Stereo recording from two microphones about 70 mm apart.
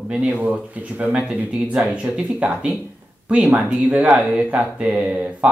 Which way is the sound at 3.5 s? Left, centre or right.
Centre.